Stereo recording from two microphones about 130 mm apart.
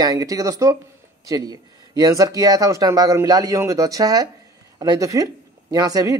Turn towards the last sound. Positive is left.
turn(degrees=-25)  # may be behind; listen again after turning